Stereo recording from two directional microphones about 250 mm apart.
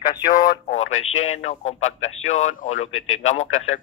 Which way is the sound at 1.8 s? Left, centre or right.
Left.